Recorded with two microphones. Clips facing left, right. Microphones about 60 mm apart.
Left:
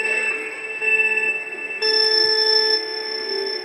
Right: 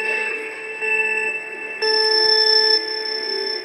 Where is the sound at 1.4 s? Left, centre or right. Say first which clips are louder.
Right 2 dB; right.